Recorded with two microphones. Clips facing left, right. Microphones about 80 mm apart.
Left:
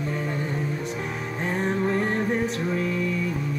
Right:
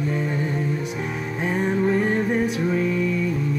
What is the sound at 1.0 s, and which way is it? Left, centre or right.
Music, centre.